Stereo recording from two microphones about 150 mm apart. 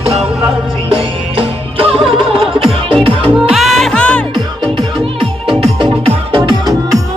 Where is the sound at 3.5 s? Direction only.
Centre (ahead or behind).